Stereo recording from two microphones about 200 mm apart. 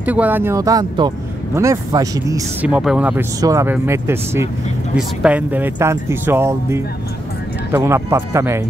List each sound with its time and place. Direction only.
0.0 s speech: 10° right (ahead or behind)
2.7 s speech: 5° right (ahead or behind)